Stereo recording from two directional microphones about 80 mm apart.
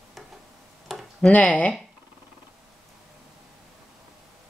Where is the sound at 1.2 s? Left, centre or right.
Centre.